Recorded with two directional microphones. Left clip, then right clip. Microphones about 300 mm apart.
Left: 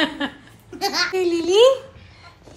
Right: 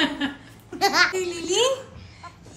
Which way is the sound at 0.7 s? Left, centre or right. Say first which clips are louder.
Right 3 dB; centre.